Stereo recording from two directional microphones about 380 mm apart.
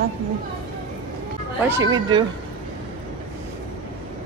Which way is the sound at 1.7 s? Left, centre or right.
Centre.